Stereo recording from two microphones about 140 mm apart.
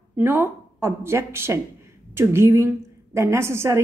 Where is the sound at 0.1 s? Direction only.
15° right (ahead or behind).